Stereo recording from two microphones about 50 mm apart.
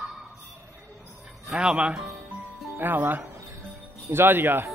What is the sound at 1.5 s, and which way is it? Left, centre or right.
Music, centre.